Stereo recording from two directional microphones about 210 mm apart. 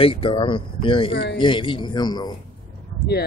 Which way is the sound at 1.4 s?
25° left (ahead or behind).